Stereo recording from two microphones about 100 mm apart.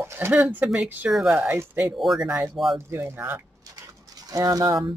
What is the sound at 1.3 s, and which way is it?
Speech, 25° right (ahead or behind).